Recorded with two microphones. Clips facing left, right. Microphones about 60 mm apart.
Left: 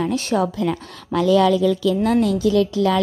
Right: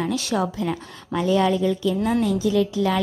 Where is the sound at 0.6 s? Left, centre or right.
Left.